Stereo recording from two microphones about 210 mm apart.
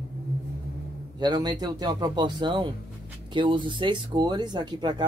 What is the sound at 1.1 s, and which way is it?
Speech, 20° right (ahead or behind).